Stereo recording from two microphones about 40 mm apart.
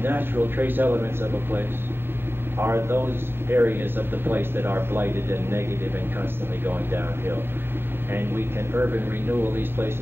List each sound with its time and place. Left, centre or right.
0.0 s a man's voice: right
2.6 s a man's voice: right
6.6 s a man's voice: right